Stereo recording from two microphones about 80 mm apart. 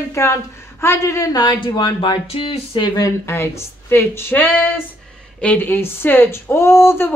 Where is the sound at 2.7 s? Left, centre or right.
Left.